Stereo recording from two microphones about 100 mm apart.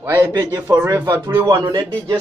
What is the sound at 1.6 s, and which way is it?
Speech, 45° right (ahead or behind).